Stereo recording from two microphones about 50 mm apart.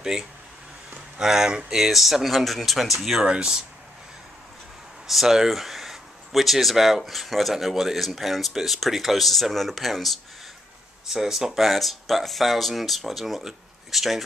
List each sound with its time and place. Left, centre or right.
0.0 s speech: centre
3.3 s speech: centre
5.0 s speech: centre